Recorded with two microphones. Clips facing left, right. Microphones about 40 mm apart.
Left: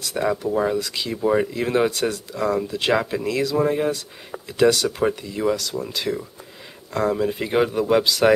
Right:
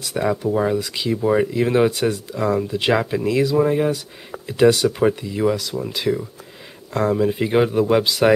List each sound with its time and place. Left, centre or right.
0.0 s speech: centre
4.5 s speech: centre
4.8 s speech: centre